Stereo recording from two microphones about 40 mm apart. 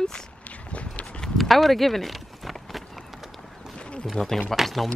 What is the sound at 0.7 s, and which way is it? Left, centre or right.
Walk, left.